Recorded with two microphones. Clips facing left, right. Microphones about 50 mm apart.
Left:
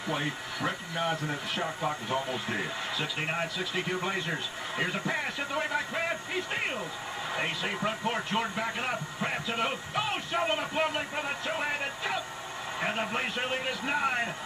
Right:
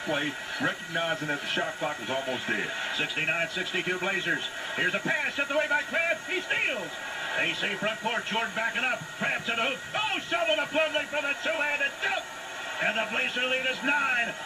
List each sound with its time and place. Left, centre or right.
0.7 s speech: right